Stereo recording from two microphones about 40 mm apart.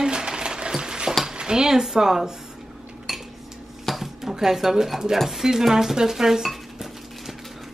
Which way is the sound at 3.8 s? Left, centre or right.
Centre.